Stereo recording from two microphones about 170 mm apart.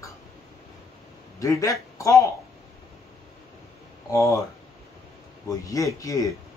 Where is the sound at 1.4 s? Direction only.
20° left (ahead or behind).